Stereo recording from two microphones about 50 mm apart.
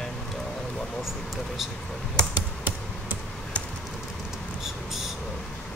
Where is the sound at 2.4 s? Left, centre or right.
Right.